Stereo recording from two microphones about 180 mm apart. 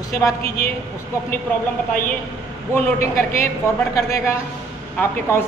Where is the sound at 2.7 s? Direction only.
15° left (ahead or behind).